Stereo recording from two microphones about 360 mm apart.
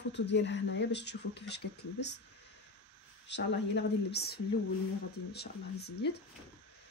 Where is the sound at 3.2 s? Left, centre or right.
Left.